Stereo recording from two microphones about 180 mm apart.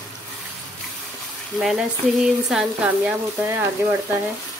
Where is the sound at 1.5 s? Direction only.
5° right (ahead or behind).